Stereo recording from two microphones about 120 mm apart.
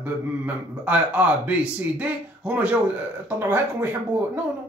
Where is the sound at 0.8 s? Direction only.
15° right (ahead or behind).